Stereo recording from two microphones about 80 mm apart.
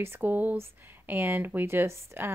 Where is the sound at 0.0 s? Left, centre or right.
Right.